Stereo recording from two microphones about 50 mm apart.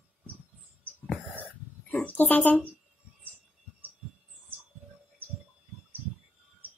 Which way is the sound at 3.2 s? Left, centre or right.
Right.